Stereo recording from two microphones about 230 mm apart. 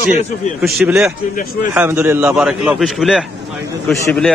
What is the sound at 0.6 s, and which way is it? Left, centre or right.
A man's voice, centre.